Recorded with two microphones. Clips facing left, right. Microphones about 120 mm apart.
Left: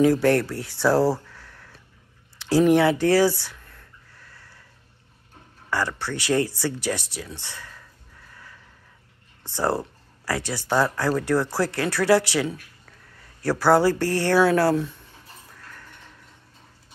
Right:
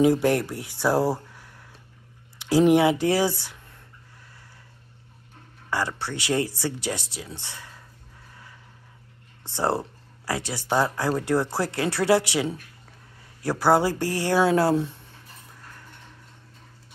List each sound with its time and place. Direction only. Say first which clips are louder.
0.0 s speech: left 1 dB; 20° right (ahead or behind)
5.7 s speech: left 1 dB; 20° right (ahead or behind)
9.4 s speech: left 1 dB; 25° right (ahead or behind)